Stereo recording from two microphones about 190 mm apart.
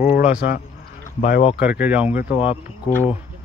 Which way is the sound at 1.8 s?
10° right (ahead or behind).